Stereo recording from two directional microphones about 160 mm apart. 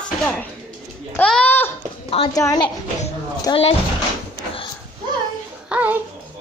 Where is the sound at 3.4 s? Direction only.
35° left (ahead or behind).